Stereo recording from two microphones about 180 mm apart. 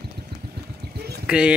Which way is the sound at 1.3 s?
5° right (ahead or behind).